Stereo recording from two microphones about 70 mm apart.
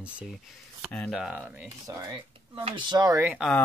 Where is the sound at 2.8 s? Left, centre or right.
Right.